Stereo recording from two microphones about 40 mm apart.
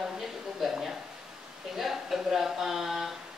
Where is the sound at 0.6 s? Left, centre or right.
Centre.